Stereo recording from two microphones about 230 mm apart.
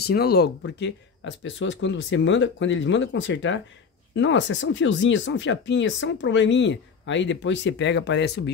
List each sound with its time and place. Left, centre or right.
0.0 s speech: left